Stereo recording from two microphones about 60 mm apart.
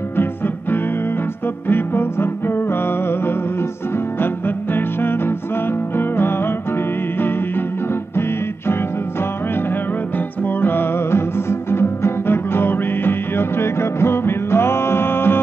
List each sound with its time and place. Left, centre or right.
1.7 s music: left
4.7 s music: left
10.1 s music: left